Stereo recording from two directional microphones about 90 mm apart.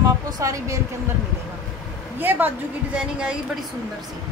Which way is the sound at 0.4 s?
35° right (ahead or behind).